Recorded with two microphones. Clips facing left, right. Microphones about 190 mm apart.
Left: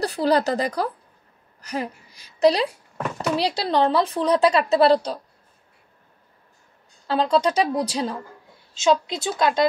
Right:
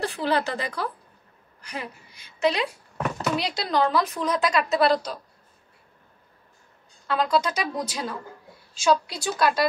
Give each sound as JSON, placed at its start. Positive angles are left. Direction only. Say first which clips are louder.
{"t": 0.0, "sound": "a woman's voice", "louder": "left 5 dB", "side_deg": 40}
{"t": 7.1, "sound": "a woman's voice", "louder": "left 4 dB", "side_deg": 30}